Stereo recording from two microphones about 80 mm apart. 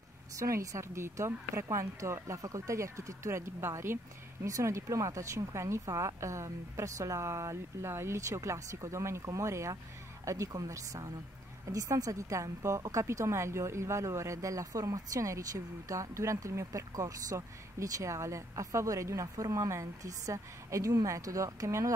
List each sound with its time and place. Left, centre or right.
0.4 s speech: right
4.5 s a woman's voice: right